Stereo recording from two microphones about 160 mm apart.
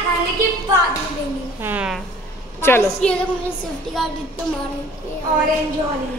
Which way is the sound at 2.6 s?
15° left (ahead or behind).